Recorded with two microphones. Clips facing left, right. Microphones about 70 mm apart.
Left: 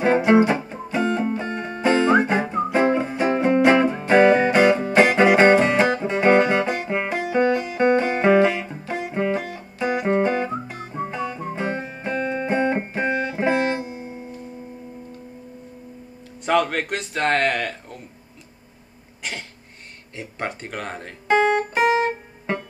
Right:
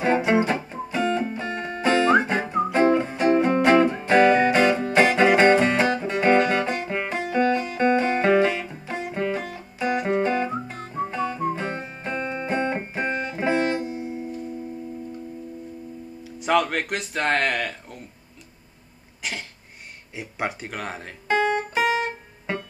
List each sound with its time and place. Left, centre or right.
0.0 s music: centre
0.9 s music: left
2.0 s whistling: centre
2.9 s music: centre
9.9 s music: centre
10.2 s music: left
11.0 s music: centre
11.9 s music: centre
12.4 s music: centre
16.3 s a sound: centre
19.2 s sneeze: centre
20.2 s guitar: centre